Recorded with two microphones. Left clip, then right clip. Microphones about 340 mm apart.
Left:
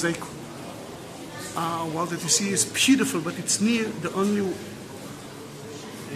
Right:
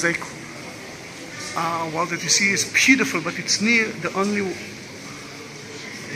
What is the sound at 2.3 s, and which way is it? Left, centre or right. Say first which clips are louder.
Speech: right 7 dB; left.